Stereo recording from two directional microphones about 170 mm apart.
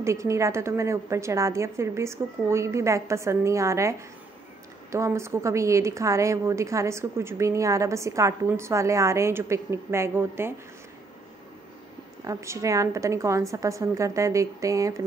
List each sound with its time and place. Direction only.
0.0 s a woman's voice: 15° right (ahead or behind)
4.9 s a woman's voice: 15° right (ahead or behind)
12.3 s a woman's voice: 15° right (ahead or behind)